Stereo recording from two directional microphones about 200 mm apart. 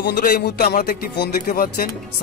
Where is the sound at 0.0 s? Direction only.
55° left (ahead or behind).